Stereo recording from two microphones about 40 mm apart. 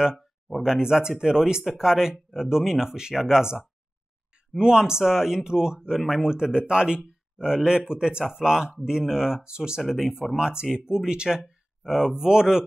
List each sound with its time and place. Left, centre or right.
0.6 s speech: centre
9.8 s speech: centre